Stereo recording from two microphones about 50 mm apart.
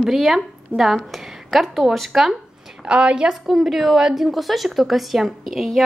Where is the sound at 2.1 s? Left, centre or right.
Centre.